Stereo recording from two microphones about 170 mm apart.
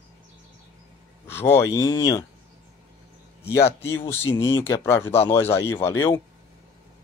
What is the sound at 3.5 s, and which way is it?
Speech, 15° left (ahead or behind).